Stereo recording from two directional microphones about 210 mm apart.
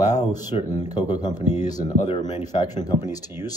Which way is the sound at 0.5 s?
30° left (ahead or behind).